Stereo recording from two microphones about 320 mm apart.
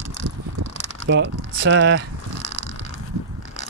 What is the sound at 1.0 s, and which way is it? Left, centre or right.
Speech, right.